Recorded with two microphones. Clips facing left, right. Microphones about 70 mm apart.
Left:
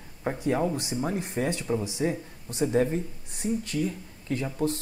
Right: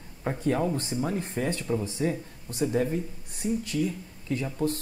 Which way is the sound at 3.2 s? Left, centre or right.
Left.